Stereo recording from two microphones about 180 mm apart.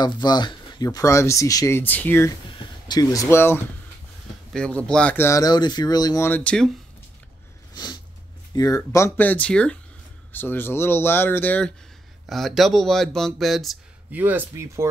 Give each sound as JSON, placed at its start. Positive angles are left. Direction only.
{"t": 0.0, "sound": "speech", "side_deg": 25}
{"t": 7.7, "sound": "a sound", "side_deg": 25}
{"t": 8.5, "sound": "speech", "side_deg": 20}